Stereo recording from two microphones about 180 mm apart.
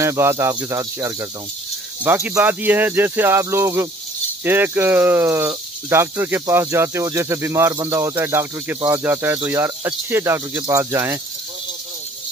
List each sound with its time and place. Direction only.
0.0 s speech: 15° right (ahead or behind)